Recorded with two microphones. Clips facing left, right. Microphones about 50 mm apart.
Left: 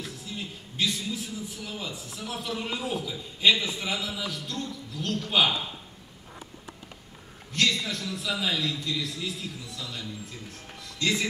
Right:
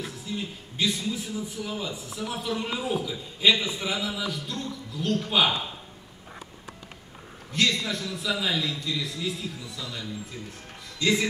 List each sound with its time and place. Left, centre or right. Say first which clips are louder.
0.4 s a man's voice: right 1 dB; centre
7.5 s a man's voice: right 1 dB; centre